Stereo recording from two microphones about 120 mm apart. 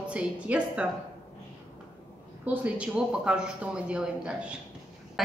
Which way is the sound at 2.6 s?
10° right (ahead or behind).